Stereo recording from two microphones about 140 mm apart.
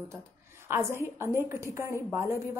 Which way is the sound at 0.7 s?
15° right (ahead or behind).